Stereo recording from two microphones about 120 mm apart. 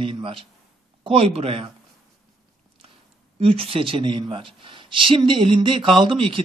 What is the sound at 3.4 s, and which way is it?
A man's voice, 50° right (ahead or behind).